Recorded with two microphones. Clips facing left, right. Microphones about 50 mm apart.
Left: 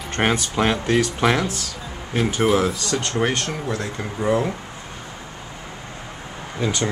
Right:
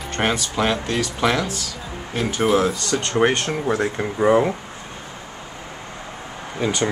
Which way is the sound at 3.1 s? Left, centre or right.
Centre.